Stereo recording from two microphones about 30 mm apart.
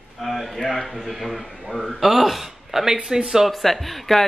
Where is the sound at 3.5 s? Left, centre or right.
Centre.